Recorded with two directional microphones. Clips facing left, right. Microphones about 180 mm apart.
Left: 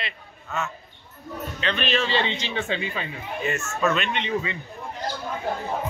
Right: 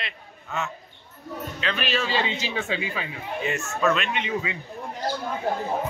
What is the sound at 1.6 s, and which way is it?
A man's voice, 5° right (ahead or behind).